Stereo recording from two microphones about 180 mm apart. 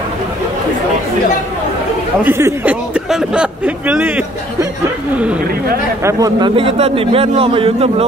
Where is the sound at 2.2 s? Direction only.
10° right (ahead or behind).